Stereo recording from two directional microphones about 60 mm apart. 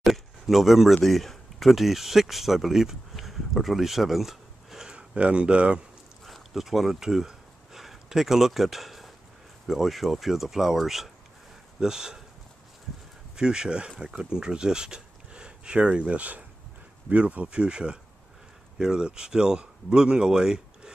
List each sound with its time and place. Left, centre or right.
0.0 s speech: centre
6.2 s a sound: centre
9.7 s speech: centre
13.4 s speech: centre